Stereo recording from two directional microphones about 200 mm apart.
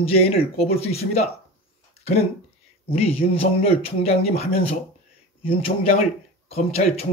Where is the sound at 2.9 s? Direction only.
30° left (ahead or behind).